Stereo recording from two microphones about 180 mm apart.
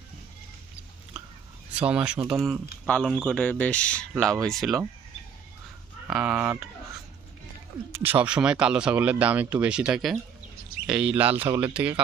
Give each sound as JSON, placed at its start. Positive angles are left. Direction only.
{"t": 1.7, "sound": "speech", "side_deg": -5}
{"t": 6.0, "sound": "speech", "side_deg": -5}
{"t": 7.9, "sound": "speech", "side_deg": -10}